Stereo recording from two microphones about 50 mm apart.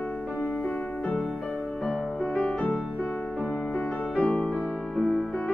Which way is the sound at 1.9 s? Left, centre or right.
Left.